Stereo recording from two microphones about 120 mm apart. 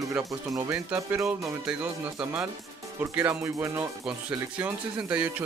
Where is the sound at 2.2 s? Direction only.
10° right (ahead or behind).